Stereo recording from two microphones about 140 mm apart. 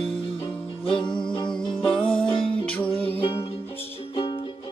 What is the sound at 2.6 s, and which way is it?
Music, 10° left (ahead or behind).